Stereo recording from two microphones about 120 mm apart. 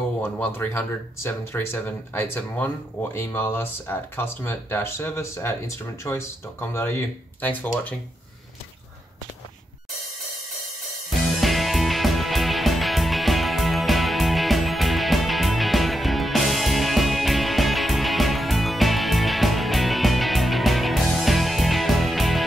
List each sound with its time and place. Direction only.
0.2 s speech: 15° left (ahead or behind)
11.2 s music: centre (ahead or behind)